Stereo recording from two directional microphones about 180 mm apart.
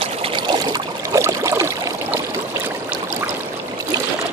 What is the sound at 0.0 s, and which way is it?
Trickle, 30° right (ahead or behind).